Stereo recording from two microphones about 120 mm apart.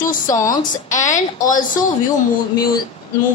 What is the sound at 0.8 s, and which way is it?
Speech, 90° left.